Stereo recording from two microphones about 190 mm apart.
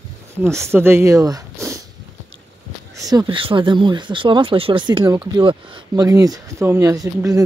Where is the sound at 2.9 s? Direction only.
20° right (ahead or behind).